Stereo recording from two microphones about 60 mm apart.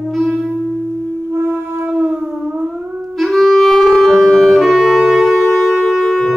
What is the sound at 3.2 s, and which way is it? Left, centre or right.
Saxophone, centre.